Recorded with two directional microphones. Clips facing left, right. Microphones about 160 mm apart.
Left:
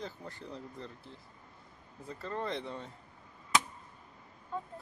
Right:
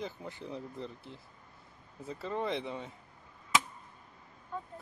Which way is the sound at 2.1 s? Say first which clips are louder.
Right 3 dB; 10° right (ahead or behind).